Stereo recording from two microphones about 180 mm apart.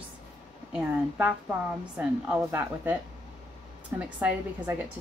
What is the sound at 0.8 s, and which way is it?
A woman's voice, 10° right (ahead or behind).